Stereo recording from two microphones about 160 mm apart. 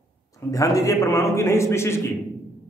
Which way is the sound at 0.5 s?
20° left (ahead or behind).